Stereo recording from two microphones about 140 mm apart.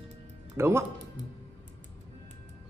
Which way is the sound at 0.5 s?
20° right (ahead or behind).